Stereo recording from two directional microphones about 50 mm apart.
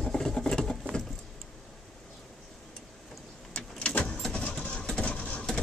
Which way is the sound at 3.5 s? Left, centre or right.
Left.